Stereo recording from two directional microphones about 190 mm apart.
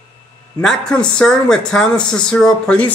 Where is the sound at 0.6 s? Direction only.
5° left (ahead or behind).